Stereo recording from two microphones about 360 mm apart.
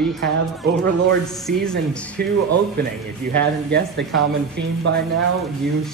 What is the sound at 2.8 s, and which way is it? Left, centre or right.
Speech, right.